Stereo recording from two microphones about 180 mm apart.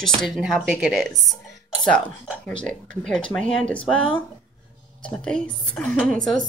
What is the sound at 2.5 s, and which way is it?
A woman's voice, 5° left (ahead or behind).